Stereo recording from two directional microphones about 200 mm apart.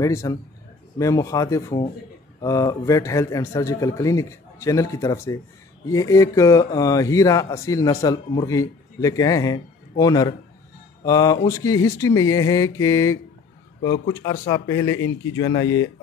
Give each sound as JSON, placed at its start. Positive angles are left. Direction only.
{"t": 0.0, "sound": "a man's voice", "side_deg": 15}